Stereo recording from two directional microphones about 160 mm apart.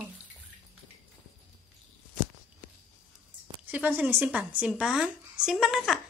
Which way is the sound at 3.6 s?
10° right (ahead or behind).